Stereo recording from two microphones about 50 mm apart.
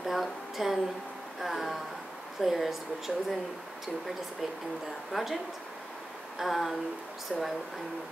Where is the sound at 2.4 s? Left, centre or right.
Centre.